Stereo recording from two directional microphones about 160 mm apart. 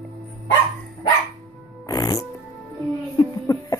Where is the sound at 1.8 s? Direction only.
25° left (ahead or behind).